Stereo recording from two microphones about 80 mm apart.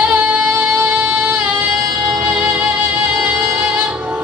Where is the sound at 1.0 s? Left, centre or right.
Centre.